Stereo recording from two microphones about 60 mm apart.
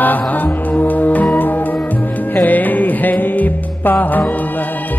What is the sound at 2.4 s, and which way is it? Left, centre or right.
Music, left.